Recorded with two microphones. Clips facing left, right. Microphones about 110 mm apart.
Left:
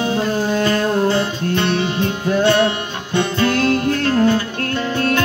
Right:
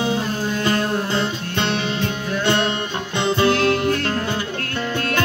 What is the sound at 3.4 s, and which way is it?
Music, 25° right (ahead or behind).